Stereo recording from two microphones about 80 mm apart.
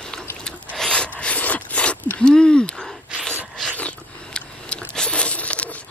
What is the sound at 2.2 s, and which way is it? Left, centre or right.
Gasp, centre.